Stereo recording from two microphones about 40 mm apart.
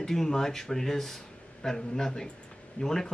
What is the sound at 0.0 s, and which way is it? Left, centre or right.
Speech, centre.